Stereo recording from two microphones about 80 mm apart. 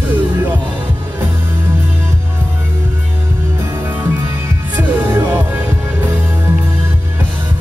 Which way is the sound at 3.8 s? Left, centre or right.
Right.